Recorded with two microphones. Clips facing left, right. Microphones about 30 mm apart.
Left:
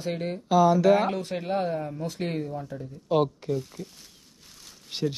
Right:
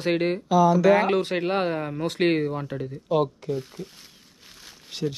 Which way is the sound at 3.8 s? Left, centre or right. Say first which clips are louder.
Right 2 dB; centre.